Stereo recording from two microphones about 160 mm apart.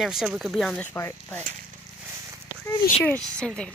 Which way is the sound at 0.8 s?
15° left (ahead or behind).